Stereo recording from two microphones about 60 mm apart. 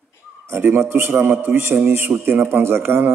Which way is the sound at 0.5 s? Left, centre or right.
Right.